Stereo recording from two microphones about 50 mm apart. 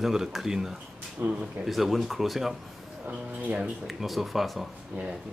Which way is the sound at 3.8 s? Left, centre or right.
Centre.